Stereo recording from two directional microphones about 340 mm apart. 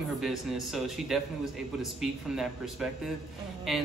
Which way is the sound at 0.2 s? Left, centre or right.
Centre.